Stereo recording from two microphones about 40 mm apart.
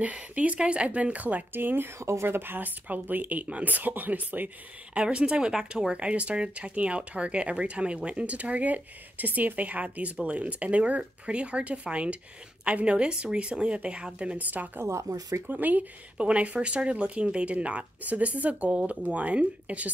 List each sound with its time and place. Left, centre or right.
0.0 s speech: right
1.5 s speech: right
4.9 s speech: right
14.4 s speech: right
16.2 s speech: right